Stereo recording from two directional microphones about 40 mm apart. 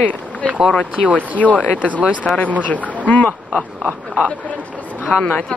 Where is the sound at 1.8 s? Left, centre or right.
Right.